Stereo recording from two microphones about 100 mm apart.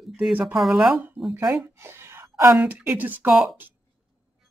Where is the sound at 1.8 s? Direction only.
25° right (ahead or behind).